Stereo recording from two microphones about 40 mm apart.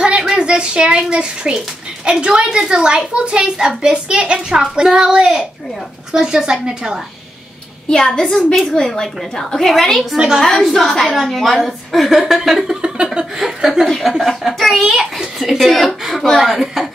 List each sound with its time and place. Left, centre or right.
0.4 s a child's voice: right
7.9 s a woman's voice: centre
10.1 s a woman's voice: centre
10.4 s a woman's voice: centre
12.6 s a sound: right
13.4 s a woman's voice: centre